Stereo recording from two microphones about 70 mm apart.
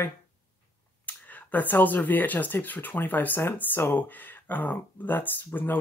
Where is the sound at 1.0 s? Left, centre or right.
Left.